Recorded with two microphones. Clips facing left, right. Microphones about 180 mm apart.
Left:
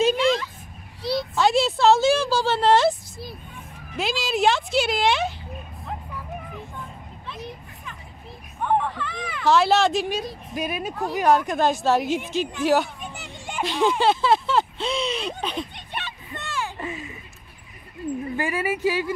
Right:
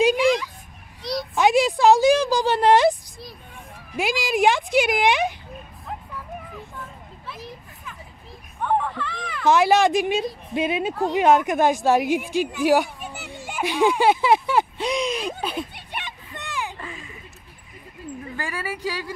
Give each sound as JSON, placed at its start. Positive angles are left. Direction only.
{"t": 0.0, "sound": "a sound", "side_deg": -10}
{"t": 1.3, "sound": "a woman's voice", "side_deg": -15}
{"t": 7.2, "sound": "children playing", "side_deg": -5}
{"t": 8.6, "sound": "a sound", "side_deg": 0}
{"t": 9.5, "sound": "a woman's voice", "side_deg": -15}
{"t": 13.1, "sound": "children playing", "side_deg": -5}
{"t": 13.5, "sound": "speech", "side_deg": -10}
{"t": 16.7, "sound": "a sound", "side_deg": 20}
{"t": 18.3, "sound": "speech", "side_deg": 20}